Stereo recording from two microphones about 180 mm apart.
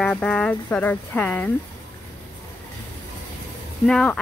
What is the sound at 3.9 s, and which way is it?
Speech, 5° left (ahead or behind).